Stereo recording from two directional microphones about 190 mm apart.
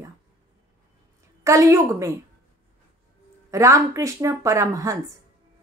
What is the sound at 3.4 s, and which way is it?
Speech, 15° right (ahead or behind).